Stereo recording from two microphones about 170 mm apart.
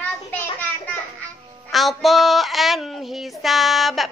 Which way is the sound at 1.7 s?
Centre (ahead or behind).